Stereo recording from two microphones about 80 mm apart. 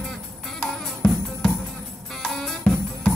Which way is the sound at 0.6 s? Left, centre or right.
Centre.